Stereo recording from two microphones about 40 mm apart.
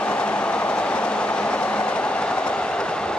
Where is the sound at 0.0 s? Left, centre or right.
Left.